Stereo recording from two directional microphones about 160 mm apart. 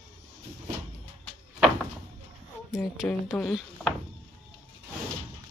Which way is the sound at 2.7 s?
Centre (ahead or behind).